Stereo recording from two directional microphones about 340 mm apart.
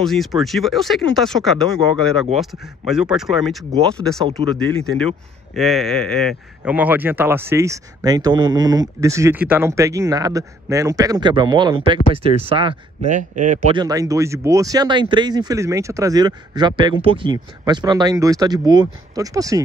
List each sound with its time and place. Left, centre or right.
0.0 s speech: centre